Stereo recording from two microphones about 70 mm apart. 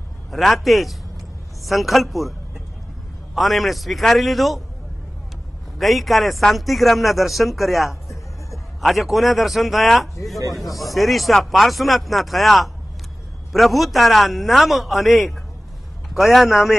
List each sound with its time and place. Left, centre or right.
0.3 s speech: centre
3.3 s speech: centre
5.8 s speech: centre